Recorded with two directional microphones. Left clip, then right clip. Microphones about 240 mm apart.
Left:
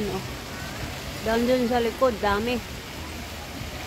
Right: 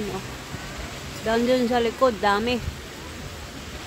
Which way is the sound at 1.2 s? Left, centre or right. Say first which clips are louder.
Right 1 dB; right.